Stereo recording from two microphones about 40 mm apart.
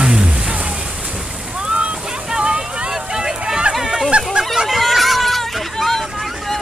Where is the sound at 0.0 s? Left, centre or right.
Centre.